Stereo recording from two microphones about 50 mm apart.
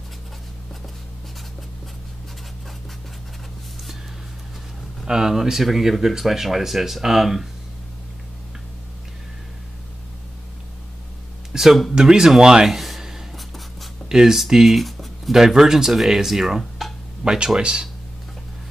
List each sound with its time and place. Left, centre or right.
5.0 s speech: centre
11.5 s a sound: centre
11.9 s speech: centre
12.6 s a sound: centre
14.0 s speech: centre
15.3 s speech: centre
17.2 s speech: centre